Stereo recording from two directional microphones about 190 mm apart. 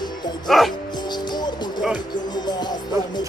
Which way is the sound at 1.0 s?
20° left (ahead or behind).